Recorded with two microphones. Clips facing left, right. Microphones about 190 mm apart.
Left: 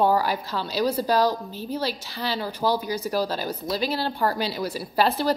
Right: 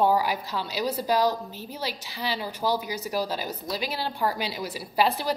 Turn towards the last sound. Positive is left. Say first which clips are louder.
# left 2 dB
turn(degrees=-15)  # may be behind; listen again after turning